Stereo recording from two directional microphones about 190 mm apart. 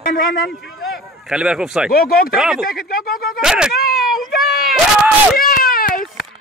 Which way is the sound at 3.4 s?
5° right (ahead or behind).